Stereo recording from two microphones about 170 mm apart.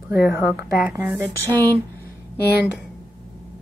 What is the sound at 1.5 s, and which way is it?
Speech, 10° left (ahead or behind).